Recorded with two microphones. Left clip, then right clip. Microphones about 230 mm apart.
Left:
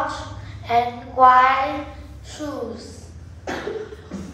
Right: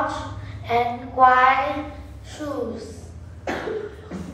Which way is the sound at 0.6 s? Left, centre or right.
Left.